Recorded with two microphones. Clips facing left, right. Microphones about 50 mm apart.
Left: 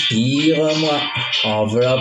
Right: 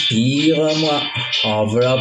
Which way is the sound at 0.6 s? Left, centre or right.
Left.